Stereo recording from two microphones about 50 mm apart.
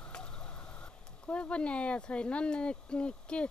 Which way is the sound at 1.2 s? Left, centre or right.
Left.